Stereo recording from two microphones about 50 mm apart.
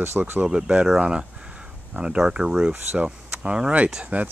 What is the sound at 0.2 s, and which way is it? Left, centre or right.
Speech, right.